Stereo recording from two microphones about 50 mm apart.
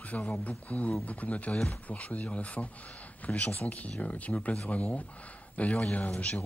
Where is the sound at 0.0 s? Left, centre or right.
Left.